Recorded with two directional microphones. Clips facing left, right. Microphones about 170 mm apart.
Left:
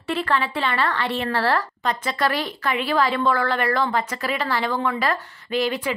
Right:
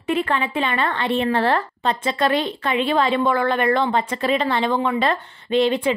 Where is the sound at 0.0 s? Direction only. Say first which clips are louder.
Right 2 dB; 20° right (ahead or behind).